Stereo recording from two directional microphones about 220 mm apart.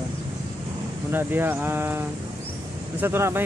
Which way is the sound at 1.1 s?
10° right (ahead or behind).